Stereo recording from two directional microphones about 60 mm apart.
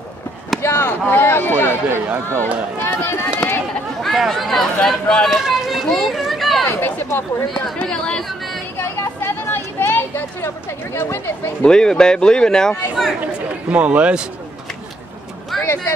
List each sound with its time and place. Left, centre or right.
0.6 s chop: left
1.0 s a sound: left
1.9 s speech: right
2.8 s speech: left
4.0 s a man's voice: centre
5.3 s run: centre
6.0 s a sound: centre
6.7 s speech: left
7.8 s a man's voice: centre
8.7 s a sound: left
11.6 s a man's voice: centre
13.7 s speech: right
15.5 s vehicle: centre